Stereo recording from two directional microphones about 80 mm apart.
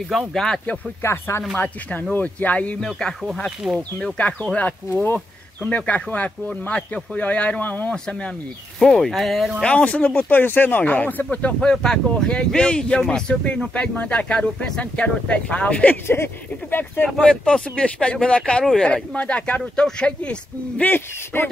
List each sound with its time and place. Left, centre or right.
0.1 s speech: centre
1.0 s speech: left
2.8 s speech: centre
3.6 s speech: centre
4.0 s speech: centre
9.6 s speech: centre
11.2 s speech: centre
17.2 s speech: centre